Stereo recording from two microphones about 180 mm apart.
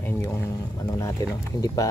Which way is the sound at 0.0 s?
15° left (ahead or behind).